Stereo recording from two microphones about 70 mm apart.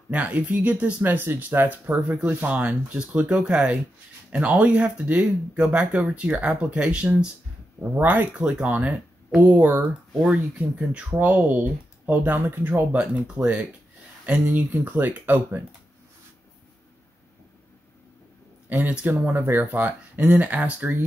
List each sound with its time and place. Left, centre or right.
0.1 s speech: centre
1.0 s speech: right
7.9 s speech: right
8.5 s speech: centre
13.0 s speech: centre
18.7 s speech: right
19.3 s speech: right